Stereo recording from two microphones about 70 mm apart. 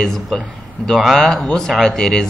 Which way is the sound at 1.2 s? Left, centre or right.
Centre.